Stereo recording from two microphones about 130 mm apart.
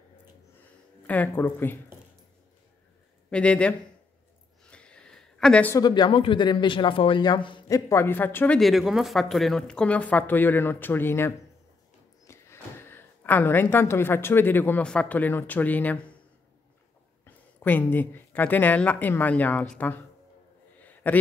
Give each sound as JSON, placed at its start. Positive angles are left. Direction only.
{"t": 1.0, "sound": "speech", "side_deg": 10}
{"t": 3.3, "sound": "speech", "side_deg": 10}
{"t": 4.6, "sound": "a sound", "side_deg": 10}
{"t": 5.8, "sound": "speech", "side_deg": 35}
{"t": 7.6, "sound": "speech", "side_deg": 25}
{"t": 8.5, "sound": "speech", "side_deg": 0}
{"t": 17.2, "sound": "a woman's voice", "side_deg": 15}
{"t": 20.8, "sound": "a sound", "side_deg": 15}